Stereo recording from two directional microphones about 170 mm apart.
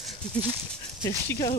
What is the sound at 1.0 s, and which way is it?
Speech, 15° left (ahead or behind).